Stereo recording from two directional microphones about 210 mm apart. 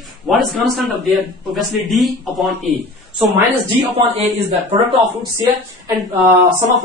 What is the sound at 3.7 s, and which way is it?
Speech, 30° right (ahead or behind).